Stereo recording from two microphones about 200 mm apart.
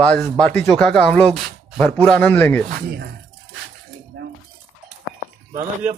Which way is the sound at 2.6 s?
50° right (ahead or behind).